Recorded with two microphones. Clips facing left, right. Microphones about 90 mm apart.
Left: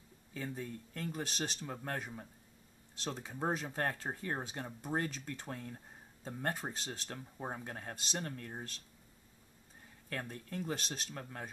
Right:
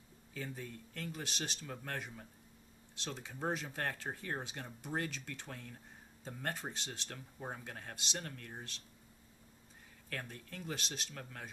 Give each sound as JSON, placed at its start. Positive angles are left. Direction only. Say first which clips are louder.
{"t": 0.3, "sound": "speech", "louder": "left 3 dB", "side_deg": 35}
{"t": 10.0, "sound": "speech", "louder": "left 3 dB", "side_deg": 35}